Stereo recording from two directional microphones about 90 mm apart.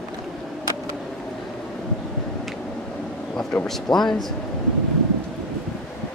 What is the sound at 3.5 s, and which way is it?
Speech, 15° left (ahead or behind).